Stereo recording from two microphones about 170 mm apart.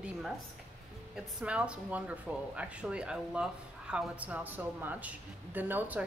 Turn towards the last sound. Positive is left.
turn(degrees=-10)  # may be behind; listen again after turning